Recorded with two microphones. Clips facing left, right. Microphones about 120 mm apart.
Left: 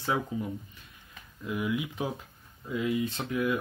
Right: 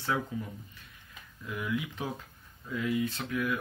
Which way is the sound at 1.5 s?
20° left (ahead or behind).